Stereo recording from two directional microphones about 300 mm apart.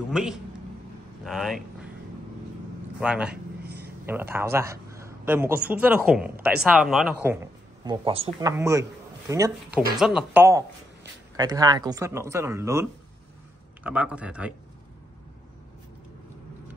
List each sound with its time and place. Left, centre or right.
0.1 s speech: centre
3.0 s speech: centre
3.6 s a sound: right
4.0 s a man's voice: centre
13.8 s speech: centre